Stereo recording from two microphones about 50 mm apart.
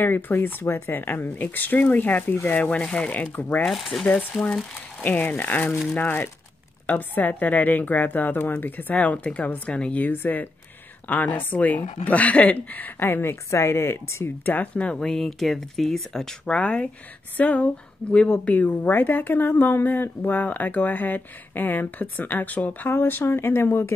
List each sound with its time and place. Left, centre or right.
0.0 s speech: left
2.5 s speech: left
3.6 s speech: centre
4.0 s speech: left
8.9 s speech: left
10.1 s speech: left
13.5 s speech: left
15.0 s speech: centre
16.5 s speech: left
18.9 s speech: left
22.8 s speech: left